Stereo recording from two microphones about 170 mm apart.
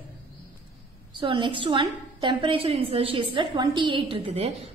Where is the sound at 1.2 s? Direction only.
30° right (ahead or behind).